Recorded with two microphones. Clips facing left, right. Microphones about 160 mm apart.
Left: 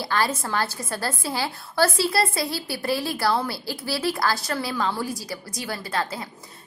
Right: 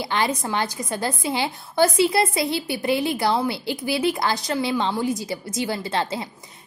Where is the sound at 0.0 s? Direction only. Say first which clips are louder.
Right 1 dB; 20° right (ahead or behind).